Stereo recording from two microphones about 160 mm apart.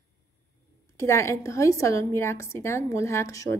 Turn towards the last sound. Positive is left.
turn(degrees=20)  # may be behind; listen again after turning